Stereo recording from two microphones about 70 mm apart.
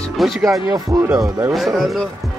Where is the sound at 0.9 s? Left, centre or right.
Right.